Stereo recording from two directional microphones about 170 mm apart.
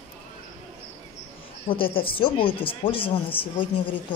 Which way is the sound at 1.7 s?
30° left (ahead or behind).